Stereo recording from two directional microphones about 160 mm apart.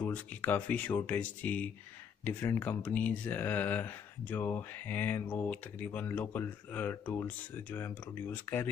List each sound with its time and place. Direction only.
0.0 s speech: 10° left (ahead or behind)